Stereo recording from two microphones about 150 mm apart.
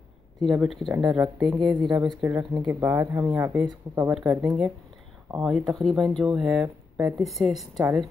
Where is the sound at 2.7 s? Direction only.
15° right (ahead or behind).